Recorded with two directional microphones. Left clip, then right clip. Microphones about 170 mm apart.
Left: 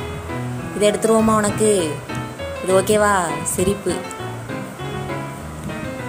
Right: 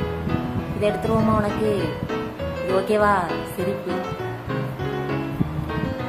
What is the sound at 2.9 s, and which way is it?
Speech, 35° left (ahead or behind).